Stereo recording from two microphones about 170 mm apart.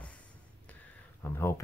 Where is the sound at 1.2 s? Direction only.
15° left (ahead or behind).